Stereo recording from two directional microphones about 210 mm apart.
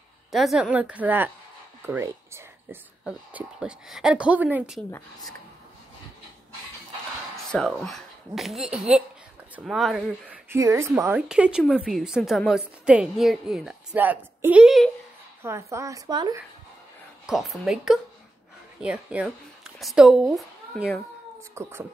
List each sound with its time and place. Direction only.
0.3 s a woman's voice: centre (ahead or behind)
7.3 s a woman's voice: 5° left (ahead or behind)
15.4 s a woman's voice: 15° right (ahead or behind)
17.3 s a woman's voice: centre (ahead or behind)
21.5 s a woman's voice: 10° right (ahead or behind)